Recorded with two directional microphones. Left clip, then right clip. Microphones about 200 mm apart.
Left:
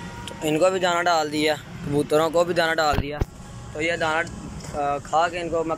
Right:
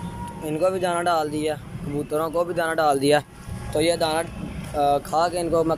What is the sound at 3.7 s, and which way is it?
Speech, 20° right (ahead or behind).